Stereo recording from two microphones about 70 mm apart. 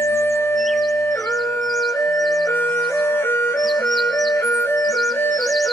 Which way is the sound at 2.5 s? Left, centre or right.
Left.